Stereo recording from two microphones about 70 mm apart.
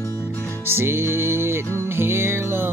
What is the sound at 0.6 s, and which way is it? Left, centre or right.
Music, right.